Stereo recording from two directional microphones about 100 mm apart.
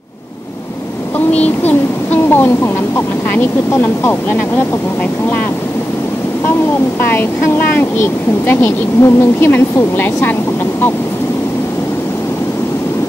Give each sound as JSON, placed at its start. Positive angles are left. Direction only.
{"t": 1.4, "sound": "speech", "side_deg": 20}
{"t": 3.7, "sound": "speech", "side_deg": 25}
{"t": 7.1, "sound": "speech", "side_deg": 20}